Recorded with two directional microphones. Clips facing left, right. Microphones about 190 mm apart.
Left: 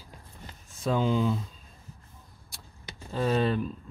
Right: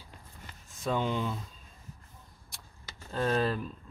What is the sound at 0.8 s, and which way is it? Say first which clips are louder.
Speech: left 5 dB; centre (ahead or behind).